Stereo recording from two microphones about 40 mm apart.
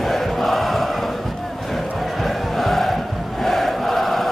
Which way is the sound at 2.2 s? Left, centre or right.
Centre.